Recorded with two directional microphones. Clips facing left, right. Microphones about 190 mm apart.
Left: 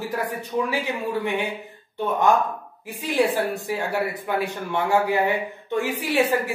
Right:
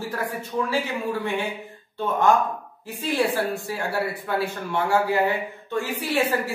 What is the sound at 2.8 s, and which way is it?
A man's voice, 15° left (ahead or behind).